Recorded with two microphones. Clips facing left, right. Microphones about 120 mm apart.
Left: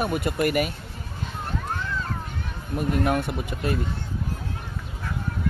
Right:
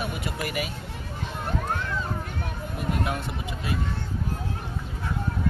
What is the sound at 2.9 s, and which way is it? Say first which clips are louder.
Speech: left 6 dB; 50° left (ahead or behind).